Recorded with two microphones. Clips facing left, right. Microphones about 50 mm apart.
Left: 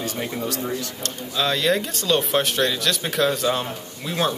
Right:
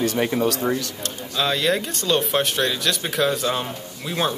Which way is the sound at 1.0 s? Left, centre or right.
Centre.